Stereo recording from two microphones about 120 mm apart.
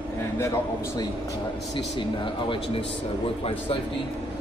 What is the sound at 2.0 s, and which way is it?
Speech, 45° left (ahead or behind).